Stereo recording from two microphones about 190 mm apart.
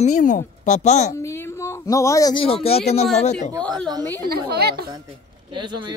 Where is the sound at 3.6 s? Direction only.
5° left (ahead or behind).